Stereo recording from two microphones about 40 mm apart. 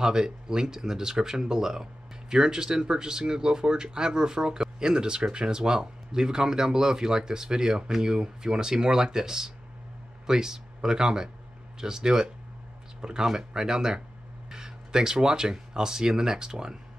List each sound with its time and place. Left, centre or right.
0.0 s speech: centre